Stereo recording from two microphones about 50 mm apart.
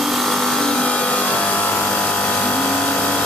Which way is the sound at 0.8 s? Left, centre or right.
Left.